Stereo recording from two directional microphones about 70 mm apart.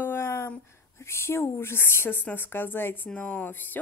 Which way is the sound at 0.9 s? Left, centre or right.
Left.